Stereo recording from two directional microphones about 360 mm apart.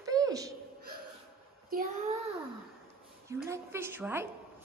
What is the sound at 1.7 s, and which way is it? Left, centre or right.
Child singing, right.